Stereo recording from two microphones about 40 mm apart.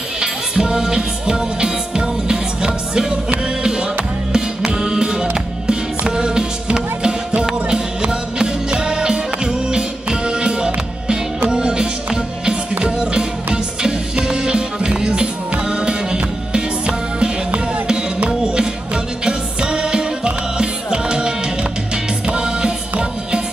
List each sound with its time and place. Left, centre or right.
0.2 s music: centre